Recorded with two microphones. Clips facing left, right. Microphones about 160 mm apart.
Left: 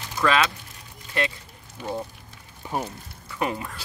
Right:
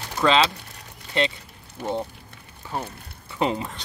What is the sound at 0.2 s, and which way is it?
Speech, 25° right (ahead or behind).